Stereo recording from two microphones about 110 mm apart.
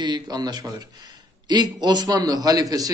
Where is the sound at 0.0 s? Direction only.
40° right (ahead or behind).